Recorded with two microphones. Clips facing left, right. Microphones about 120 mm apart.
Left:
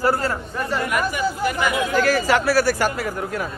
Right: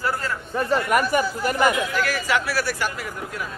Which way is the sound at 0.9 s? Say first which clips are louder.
Right 2 dB; 45° right (ahead or behind).